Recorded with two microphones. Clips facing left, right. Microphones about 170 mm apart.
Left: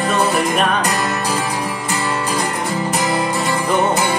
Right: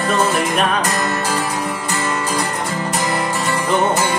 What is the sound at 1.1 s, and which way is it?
Music, 15° left (ahead or behind).